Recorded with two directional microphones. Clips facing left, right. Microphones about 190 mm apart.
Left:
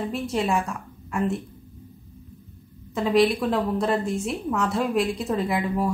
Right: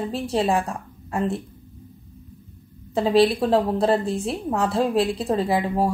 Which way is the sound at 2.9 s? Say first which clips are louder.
Right 2 dB; 30° right (ahead or behind).